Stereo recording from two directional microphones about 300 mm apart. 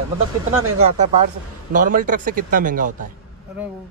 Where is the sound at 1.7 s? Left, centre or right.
Right.